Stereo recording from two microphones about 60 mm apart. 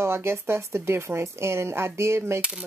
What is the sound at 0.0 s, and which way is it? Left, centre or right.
Speech, right.